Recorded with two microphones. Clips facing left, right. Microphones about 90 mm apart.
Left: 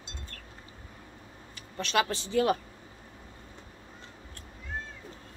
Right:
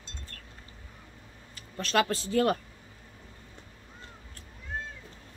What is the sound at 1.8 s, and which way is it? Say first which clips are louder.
Speech: right 1 dB; 40° right (ahead or behind).